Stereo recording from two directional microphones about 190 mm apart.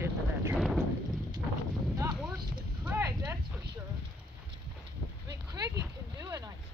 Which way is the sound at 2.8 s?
15° right (ahead or behind).